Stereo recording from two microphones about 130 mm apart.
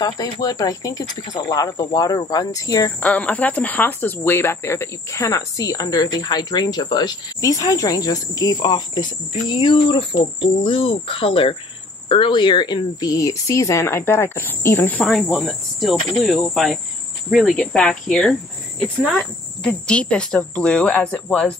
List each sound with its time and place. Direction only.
0.0 s speech: 30° left (ahead or behind)
3.0 s speech: 10° left (ahead or behind); by 9.0 s 35° left (ahead or behind)
9.5 s cricket: 40° left (ahead or behind)
12.1 s speech: 40° left (ahead or behind); by 15.0 s 15° left (ahead or behind)
15.3 s cricket: centre (ahead or behind)
18.8 s speech: 5° left (ahead or behind)